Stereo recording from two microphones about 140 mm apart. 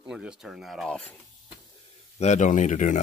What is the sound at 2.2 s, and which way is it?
Speech, 55° left (ahead or behind).